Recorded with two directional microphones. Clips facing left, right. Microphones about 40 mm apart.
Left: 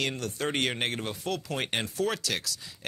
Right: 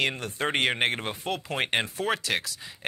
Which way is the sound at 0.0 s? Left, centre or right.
Right.